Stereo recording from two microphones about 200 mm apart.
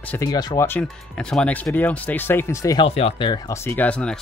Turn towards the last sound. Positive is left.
turn(degrees=5)  # may be behind; listen again after turning